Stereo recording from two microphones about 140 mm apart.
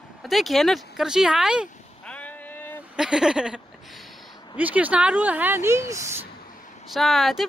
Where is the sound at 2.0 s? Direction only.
10° left (ahead or behind).